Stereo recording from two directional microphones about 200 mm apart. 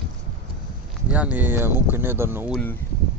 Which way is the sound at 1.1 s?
5° right (ahead or behind).